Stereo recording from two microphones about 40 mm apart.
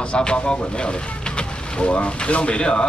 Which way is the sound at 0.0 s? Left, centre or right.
Left.